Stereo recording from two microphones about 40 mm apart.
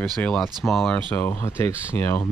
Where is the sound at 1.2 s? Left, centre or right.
Left.